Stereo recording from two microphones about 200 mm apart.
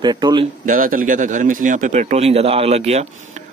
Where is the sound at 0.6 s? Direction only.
40° right (ahead or behind).